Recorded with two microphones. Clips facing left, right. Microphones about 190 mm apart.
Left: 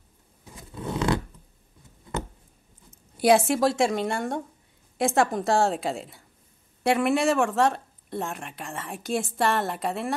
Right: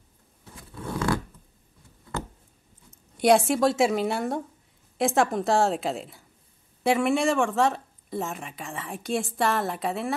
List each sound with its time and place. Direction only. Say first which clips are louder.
0.5 s zipper: left 2 dB; 20° left (ahead or behind)
2.1 s a sound: left 2 dB; 20° left (ahead or behind)
3.2 s speech: even; centre (ahead or behind)